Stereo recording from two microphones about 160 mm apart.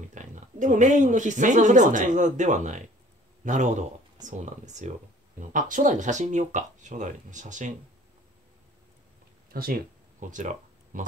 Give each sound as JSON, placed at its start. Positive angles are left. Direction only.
{"t": 0.1, "sound": "speech", "side_deg": -50}
{"t": 9.5, "sound": "speech", "side_deg": -70}
{"t": 10.3, "sound": "speech", "side_deg": -55}